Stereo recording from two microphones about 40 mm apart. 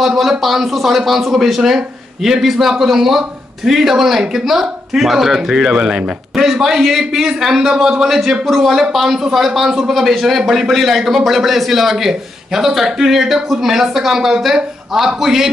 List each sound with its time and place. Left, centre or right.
0.0 s a man's voice: centre
5.5 s a man's voice: centre